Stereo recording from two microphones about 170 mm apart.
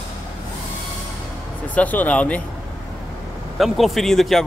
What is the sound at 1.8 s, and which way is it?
Speech, 10° left (ahead or behind).